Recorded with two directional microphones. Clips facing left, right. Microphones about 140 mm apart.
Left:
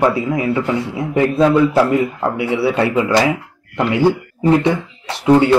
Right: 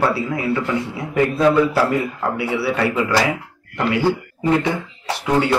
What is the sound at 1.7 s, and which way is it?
Speech, 20° left (ahead or behind).